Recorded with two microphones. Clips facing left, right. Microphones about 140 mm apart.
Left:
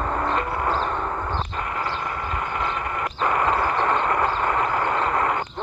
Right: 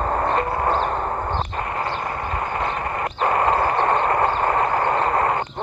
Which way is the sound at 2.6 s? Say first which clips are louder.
Right 2 dB; 35° right (ahead or behind).